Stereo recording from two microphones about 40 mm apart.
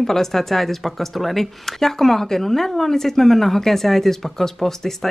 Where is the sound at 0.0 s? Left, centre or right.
Centre.